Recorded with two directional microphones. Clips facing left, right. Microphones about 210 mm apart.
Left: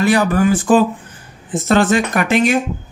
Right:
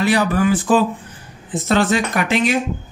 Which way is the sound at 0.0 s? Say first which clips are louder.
Left 3 dB; 45° left (ahead or behind).